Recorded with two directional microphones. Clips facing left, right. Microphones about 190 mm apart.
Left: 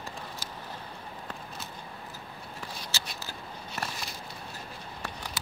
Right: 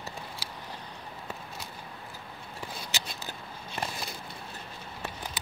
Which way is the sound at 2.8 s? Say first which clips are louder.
Right 1 dB; 15° right (ahead or behind).